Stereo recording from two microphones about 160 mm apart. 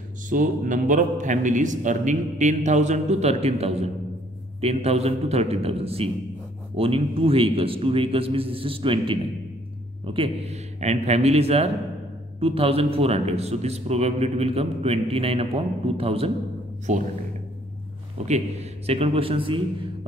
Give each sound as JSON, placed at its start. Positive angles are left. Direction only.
{"t": 0.3, "sound": "a man's voice", "side_deg": -55}
{"t": 16.9, "sound": "a man's voice", "side_deg": -50}
{"t": 18.1, "sound": "a man's voice", "side_deg": -45}